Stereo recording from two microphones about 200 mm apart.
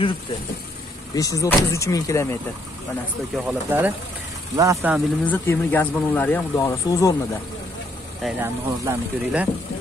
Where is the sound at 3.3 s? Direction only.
5° right (ahead or behind).